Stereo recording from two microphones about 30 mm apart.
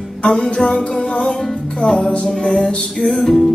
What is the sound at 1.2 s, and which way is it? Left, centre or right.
Music, left.